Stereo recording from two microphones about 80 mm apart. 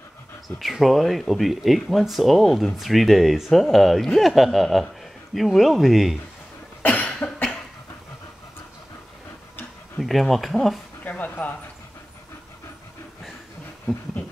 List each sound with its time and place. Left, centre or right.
0.6 s speech: centre
6.8 s cough: centre
9.9 s speech: centre
11.1 s a sound: left